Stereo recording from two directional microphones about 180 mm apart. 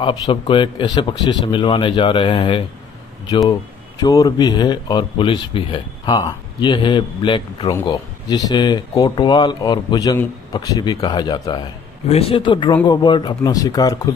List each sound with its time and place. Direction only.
0.0 s speech: 30° left (ahead or behind)